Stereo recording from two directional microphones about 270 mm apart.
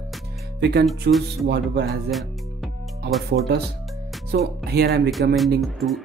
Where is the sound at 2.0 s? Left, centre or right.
Centre.